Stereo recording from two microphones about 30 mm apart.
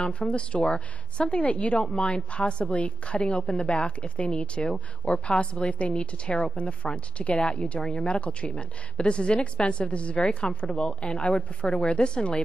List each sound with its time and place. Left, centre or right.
0.1 s a woman's voice: left
5.4 s a woman's voice: left
9.8 s a woman's voice: left
10.4 s a woman's voice: left
10.9 s a woman's voice: left
12.0 s a woman's voice: left